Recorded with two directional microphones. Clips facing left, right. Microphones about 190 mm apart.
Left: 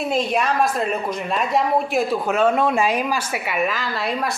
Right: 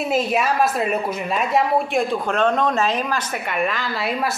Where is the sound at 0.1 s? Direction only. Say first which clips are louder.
Right 1 dB; 5° right (ahead or behind).